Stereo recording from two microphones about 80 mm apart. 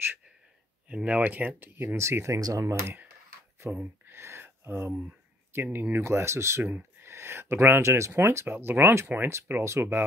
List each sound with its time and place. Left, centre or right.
0.8 s speech: centre; by 3.0 s right
3.7 s a sound: right
5.5 s speech: right